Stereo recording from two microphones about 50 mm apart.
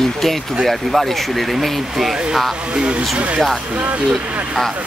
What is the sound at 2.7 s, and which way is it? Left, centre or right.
Speech, centre.